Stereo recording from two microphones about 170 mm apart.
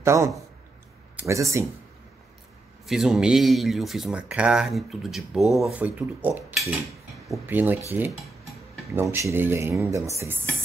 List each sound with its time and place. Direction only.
0.0 s a man's voice: 15° right (ahead or behind)
2.9 s speech: centre (ahead or behind)
7.9 s dishes: 10° right (ahead or behind)